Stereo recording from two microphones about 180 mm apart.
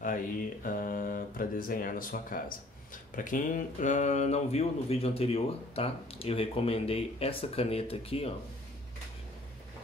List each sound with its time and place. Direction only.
0.7 s speech: 50° left (ahead or behind); by 8.3 s 35° left (ahead or behind)